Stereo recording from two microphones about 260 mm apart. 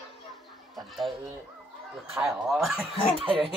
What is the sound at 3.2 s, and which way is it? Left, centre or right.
Speech, right.